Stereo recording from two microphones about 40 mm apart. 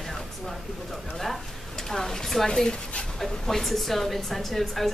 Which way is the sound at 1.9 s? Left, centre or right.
Centre.